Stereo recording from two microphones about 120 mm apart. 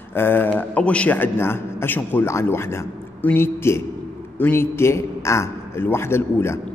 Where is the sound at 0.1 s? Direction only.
20° left (ahead or behind).